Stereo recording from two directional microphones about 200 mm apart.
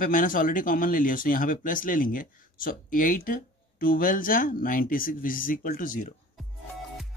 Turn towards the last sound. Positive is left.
turn(degrees=40)  # may be behind; listen again after turning